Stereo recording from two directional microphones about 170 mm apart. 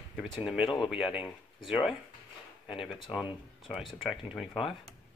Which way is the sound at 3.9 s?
Centre (ahead or behind).